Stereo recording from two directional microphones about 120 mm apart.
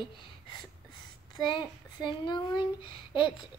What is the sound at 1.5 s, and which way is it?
A child's voice, 40° left (ahead or behind).